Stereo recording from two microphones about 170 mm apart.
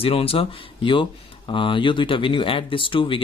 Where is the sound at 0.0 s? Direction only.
35° left (ahead or behind).